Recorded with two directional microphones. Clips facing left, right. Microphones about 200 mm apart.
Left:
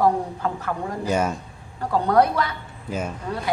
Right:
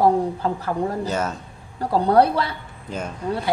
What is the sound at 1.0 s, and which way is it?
Speech, 10° left (ahead or behind).